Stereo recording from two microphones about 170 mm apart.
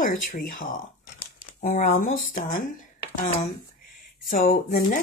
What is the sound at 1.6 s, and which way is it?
Speech, 45° left (ahead or behind).